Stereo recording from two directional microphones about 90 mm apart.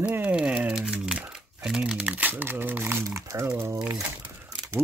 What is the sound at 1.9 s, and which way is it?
Speech, 15° right (ahead or behind).